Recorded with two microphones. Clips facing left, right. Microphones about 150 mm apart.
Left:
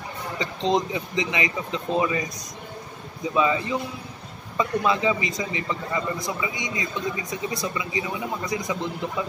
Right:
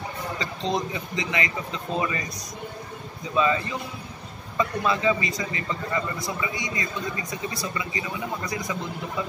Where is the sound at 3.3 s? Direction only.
15° left (ahead or behind).